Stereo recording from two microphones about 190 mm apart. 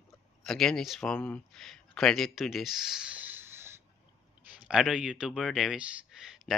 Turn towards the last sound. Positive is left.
turn(degrees=-5)  # may be behind; listen again after turning